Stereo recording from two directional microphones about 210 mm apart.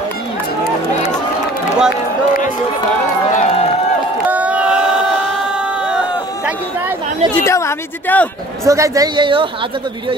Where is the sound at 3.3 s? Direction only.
35° left (ahead or behind).